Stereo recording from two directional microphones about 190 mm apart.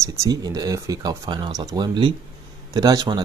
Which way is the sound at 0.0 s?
15° right (ahead or behind).